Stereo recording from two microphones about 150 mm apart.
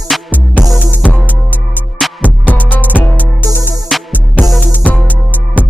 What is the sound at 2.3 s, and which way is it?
Music, 10° left (ahead or behind).